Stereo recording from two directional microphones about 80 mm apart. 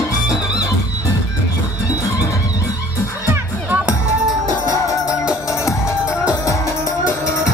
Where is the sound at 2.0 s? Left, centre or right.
Left.